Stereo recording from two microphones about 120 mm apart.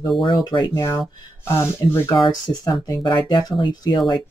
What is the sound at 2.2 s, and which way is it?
Speech, 45° left (ahead or behind).